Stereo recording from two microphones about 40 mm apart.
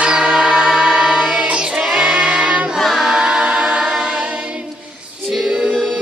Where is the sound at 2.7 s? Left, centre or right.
Centre.